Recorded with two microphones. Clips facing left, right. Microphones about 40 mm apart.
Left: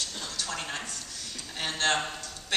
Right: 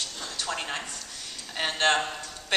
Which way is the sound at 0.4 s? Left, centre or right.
Centre.